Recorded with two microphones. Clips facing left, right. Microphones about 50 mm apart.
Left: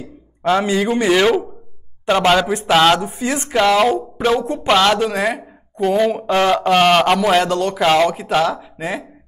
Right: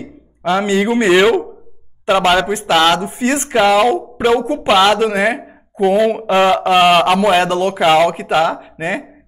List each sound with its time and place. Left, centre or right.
0.6 s speech: right
1.2 s speech: centre
3.0 s speech: right
3.5 s speech: centre
5.8 s speech: centre
7.4 s speech: right